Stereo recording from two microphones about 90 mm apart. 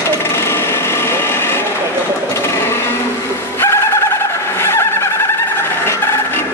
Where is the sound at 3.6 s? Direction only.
30° left (ahead or behind).